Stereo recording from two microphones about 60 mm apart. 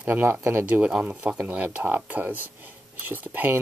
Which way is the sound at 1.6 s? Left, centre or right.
Right.